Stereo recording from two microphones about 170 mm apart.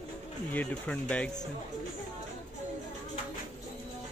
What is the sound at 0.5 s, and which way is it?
Speech, 10° left (ahead or behind).